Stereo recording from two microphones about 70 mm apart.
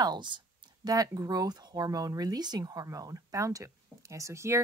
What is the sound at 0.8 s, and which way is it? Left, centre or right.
Speech, right.